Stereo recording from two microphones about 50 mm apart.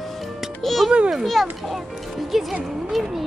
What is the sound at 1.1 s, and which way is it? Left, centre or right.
Speech, centre.